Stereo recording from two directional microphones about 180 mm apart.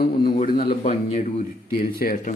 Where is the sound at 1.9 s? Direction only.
55° left (ahead or behind).